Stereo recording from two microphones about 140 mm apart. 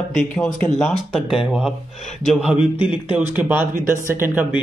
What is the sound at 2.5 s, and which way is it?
Speech, 40° left (ahead or behind).